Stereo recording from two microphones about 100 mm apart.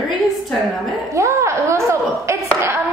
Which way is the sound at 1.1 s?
30° right (ahead or behind).